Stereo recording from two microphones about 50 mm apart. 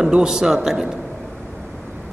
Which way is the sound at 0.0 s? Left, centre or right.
Centre.